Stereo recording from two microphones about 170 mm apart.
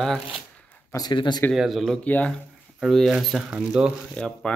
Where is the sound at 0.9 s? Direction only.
25° left (ahead or behind).